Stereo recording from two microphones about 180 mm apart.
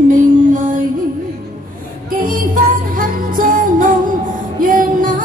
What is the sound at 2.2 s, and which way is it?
Music, 50° right (ahead or behind).